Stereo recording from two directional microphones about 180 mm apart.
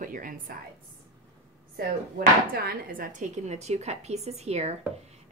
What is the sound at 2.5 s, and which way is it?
A woman's voice, 55° right (ahead or behind).